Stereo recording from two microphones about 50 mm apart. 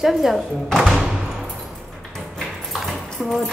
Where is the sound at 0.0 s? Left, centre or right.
Centre.